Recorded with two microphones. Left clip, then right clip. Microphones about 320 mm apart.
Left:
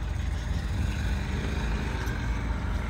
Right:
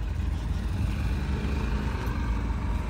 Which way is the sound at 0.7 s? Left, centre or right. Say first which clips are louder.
Even; right.